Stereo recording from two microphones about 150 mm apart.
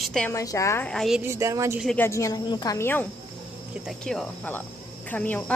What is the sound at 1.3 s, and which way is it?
Speech, 20° right (ahead or behind).